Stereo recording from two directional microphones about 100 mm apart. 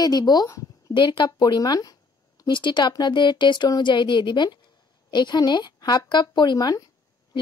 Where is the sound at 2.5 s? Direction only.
50° left (ahead or behind).